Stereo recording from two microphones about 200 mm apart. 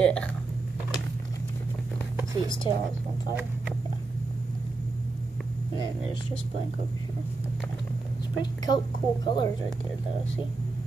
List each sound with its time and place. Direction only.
0.0 s speech: 5° left (ahead or behind)
2.4 s a woman's voice: 20° left (ahead or behind)
8.4 s a woman's voice: 20° left (ahead or behind)